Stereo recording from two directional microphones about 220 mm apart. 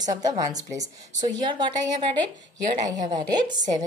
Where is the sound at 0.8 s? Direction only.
35° right (ahead or behind).